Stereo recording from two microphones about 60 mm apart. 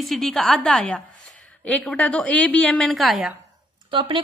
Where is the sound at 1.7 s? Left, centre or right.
Left.